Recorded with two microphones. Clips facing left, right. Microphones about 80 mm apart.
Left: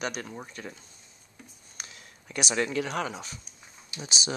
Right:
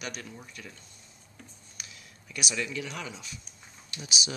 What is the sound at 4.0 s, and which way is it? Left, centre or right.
Speech, left.